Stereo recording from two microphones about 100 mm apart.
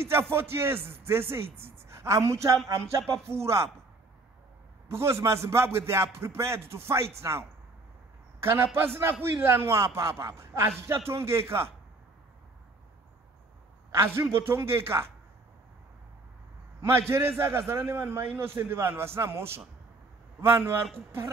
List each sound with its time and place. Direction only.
0.0 s a man's voice: 25° right (ahead or behind)
4.8 s a man's voice: 25° right (ahead or behind)
13.9 s a man's voice: 25° right (ahead or behind)
17.1 s a man's voice: 25° right (ahead or behind)